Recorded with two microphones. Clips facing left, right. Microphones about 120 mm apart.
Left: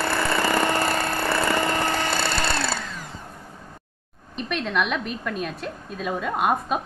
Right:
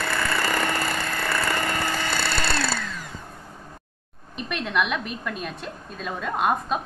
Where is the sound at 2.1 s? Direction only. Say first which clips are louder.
Left 2 dB; 25° left (ahead or behind).